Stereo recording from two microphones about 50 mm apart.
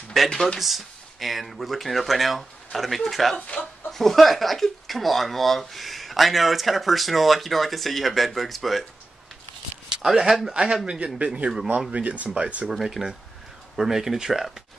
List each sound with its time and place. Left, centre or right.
0.3 s speech: centre
0.6 s speech: centre
10.0 s speech: centre
10.5 s speech: centre
12.7 s speech: centre